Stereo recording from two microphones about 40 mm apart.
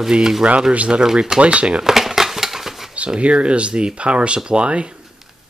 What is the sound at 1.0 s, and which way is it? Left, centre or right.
Speech, centre.